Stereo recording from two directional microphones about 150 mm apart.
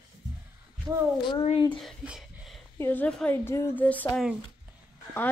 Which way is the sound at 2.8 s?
10° left (ahead or behind).